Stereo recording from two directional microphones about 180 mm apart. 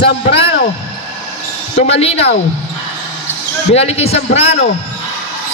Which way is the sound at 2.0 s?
35° left (ahead or behind).